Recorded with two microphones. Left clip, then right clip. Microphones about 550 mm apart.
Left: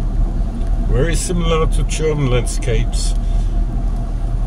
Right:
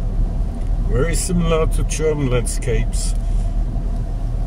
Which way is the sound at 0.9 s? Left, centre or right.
Right.